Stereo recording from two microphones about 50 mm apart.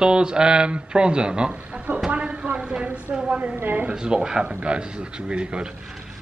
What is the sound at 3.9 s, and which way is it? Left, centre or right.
A man's voice, centre.